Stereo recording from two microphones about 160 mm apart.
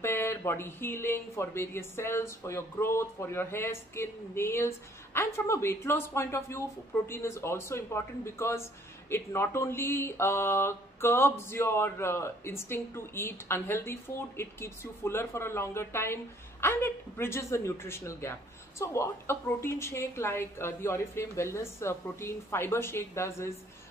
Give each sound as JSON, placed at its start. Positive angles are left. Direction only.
{"t": 0.0, "sound": "speech", "side_deg": 15}